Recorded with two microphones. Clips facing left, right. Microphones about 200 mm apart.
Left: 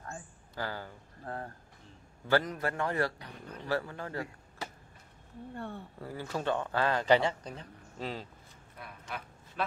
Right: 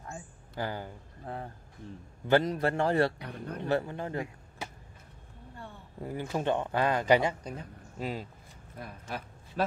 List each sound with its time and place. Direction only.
0.1 s a man's voice: 15° right (ahead or behind)
3.3 s speech: 60° right (ahead or behind)
3.6 s speech: 20° right (ahead or behind)
5.9 s speech: 15° right (ahead or behind)
8.7 s speech: 40° right (ahead or behind)